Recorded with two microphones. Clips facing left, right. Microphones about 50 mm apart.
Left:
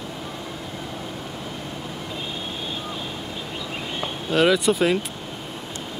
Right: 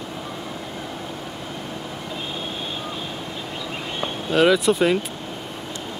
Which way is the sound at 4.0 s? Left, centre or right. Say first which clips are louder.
Right 2 dB; centre.